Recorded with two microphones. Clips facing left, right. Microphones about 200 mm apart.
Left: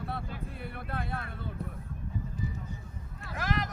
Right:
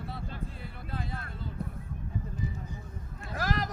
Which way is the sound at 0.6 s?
60° left (ahead or behind).